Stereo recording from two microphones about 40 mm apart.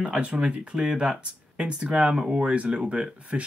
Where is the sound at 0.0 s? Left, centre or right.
Right.